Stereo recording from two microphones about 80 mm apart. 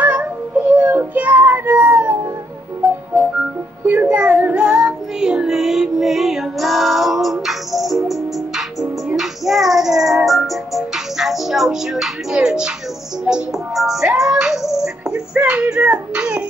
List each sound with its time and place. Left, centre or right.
0.0 s music: centre
3.8 s child singing: right; by 8.6 s centre
9.1 s music: centre
15.0 s a sound: centre